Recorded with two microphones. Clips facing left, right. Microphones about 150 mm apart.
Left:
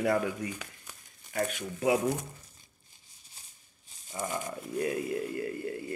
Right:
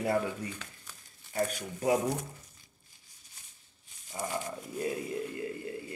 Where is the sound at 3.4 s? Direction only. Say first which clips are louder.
Left 2 dB; 30° left (ahead or behind).